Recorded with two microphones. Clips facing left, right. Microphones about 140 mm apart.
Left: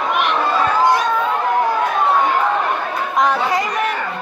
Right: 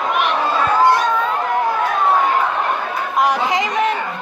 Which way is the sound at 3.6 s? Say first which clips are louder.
Right 2 dB; 90° right.